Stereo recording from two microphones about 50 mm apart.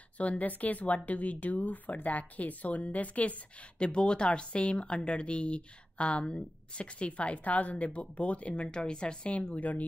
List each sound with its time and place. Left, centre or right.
0.2 s speech: left